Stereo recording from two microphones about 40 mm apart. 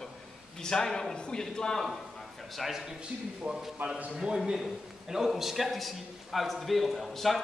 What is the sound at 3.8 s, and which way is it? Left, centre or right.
Speech, right.